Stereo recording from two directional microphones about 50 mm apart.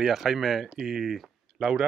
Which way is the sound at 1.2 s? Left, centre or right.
Centre.